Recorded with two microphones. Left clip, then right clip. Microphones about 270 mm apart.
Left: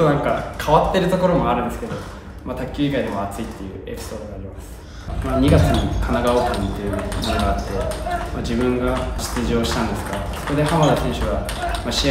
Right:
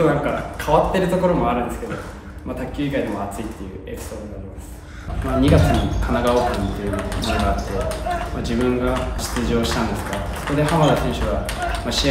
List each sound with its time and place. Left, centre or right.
0.0 s speech: centre
2.8 s speech: centre
5.2 s speech: centre